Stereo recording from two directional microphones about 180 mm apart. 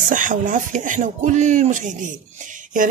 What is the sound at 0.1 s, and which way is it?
A man's voice, 45° right (ahead or behind).